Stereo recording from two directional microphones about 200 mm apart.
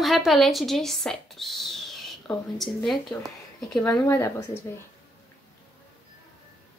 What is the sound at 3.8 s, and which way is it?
Speech, 20° left (ahead or behind).